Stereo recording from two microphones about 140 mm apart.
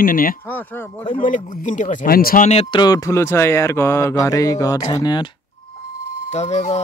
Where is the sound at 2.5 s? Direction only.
45° left (ahead or behind).